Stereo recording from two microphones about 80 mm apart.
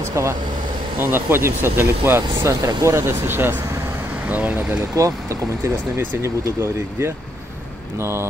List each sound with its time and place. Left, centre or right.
0.0 s vehicle: right
0.9 s speech: right
4.9 s speech: right